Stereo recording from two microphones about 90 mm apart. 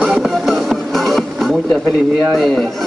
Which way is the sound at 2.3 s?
5° left (ahead or behind).